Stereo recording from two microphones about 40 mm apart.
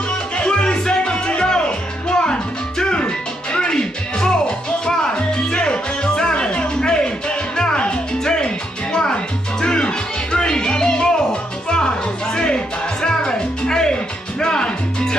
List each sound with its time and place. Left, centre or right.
0.4 s music: left
12.4 s music: left